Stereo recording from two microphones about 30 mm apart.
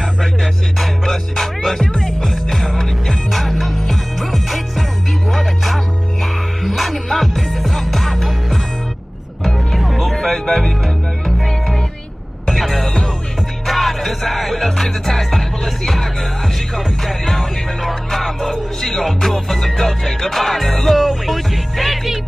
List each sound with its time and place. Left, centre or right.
0.0 s music: centre
1.1 s music: centre
9.4 s music: centre
9.8 s music: centre
10.1 s music: centre
12.4 s music: centre